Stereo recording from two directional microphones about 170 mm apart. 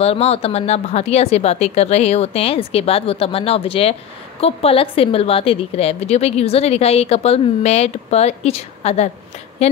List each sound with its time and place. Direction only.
0.0 s a woman's voice: 35° left (ahead or behind)